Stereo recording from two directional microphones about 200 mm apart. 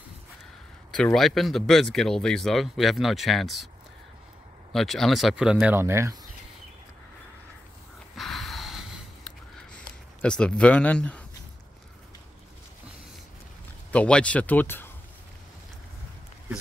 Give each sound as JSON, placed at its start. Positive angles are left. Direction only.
{"t": 0.9, "sound": "speech", "side_deg": 5}
{"t": 4.7, "sound": "speech", "side_deg": 0}
{"t": 8.2, "sound": "snort", "side_deg": 0}
{"t": 10.2, "sound": "speech", "side_deg": 5}
{"t": 13.9, "sound": "speech", "side_deg": 5}